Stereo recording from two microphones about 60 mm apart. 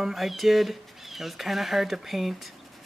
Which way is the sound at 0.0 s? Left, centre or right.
Centre.